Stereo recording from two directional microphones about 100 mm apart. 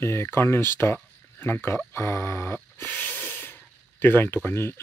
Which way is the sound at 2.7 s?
15° left (ahead or behind).